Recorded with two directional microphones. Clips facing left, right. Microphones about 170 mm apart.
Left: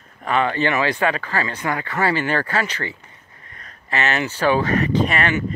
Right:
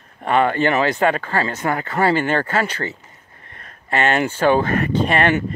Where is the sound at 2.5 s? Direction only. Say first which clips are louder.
Right 2 dB; 50° right (ahead or behind).